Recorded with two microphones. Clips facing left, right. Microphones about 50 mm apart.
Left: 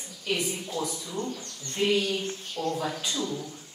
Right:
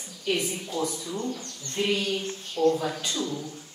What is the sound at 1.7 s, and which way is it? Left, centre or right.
Speech, centre.